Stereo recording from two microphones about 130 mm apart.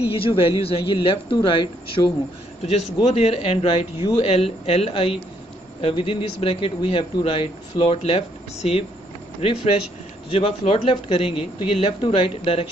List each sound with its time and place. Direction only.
0.4 s a man's voice: 45° left (ahead or behind); by 2.1 s 30° left (ahead or behind)
2.6 s a man's voice: 55° left (ahead or behind)